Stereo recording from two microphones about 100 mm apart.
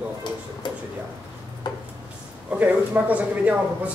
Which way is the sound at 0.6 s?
50° left (ahead or behind).